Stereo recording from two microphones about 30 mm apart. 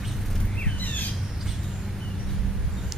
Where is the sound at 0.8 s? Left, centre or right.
Left.